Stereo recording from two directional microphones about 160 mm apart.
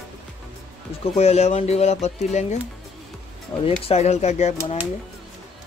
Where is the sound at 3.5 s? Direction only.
30° left (ahead or behind).